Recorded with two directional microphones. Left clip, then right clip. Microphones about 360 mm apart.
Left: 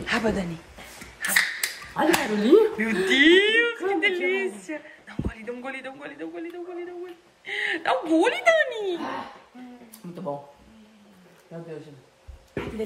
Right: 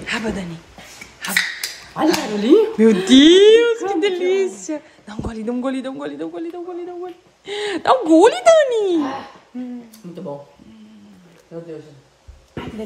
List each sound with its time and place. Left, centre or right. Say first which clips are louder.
0.0 s a woman's voice: right 1 dB; centre
2.0 s speech: right 4 dB; centre
7.6 s speech: right 9 dB; centre